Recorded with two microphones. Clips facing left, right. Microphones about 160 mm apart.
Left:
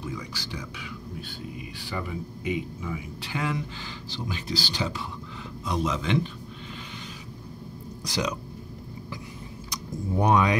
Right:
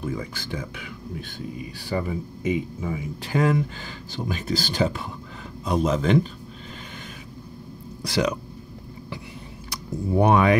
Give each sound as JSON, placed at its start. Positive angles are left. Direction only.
{"t": 0.0, "sound": "speech", "side_deg": -50}
{"t": 1.9, "sound": "speech", "side_deg": -40}
{"t": 8.0, "sound": "speech", "side_deg": -60}
{"t": 9.7, "sound": "speech", "side_deg": -60}